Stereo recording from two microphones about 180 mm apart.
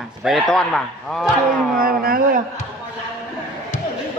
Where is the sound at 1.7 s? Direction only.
55° right (ahead or behind).